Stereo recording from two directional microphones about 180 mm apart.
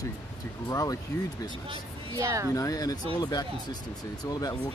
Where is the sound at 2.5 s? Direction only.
20° left (ahead or behind).